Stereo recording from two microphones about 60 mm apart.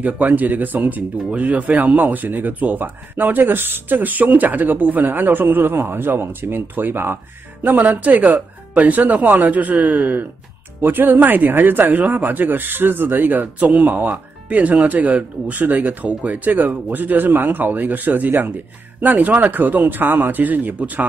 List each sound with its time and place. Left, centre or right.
0.0 s speech: right